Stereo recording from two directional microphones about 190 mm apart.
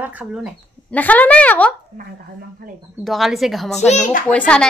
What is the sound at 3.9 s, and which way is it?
Speech, 45° left (ahead or behind).